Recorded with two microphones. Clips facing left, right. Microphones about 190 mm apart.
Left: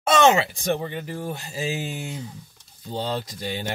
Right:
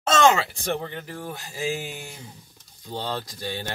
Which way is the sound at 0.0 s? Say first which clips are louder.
Left 2 dB; 15° left (ahead or behind).